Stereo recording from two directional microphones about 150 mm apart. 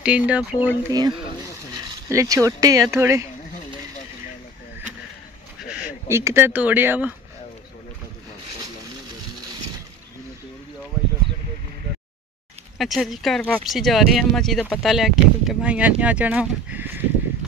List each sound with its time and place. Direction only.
0.0 s speech: 5° right (ahead or behind)
0.8 s speech: 25° right (ahead or behind)
6.0 s speech: 15° right (ahead or behind)
12.7 s speech: centre (ahead or behind)